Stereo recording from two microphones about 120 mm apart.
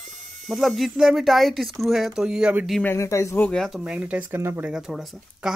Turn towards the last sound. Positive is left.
turn(degrees=-5)  # may be behind; listen again after turning